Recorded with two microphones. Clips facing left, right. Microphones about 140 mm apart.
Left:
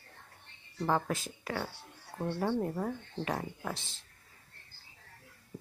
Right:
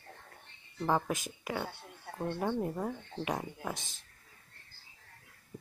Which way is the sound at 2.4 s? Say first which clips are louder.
Left 2 dB; 15° right (ahead or behind).